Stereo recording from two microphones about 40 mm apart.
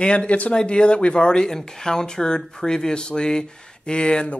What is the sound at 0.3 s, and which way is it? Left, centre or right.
Speech, left.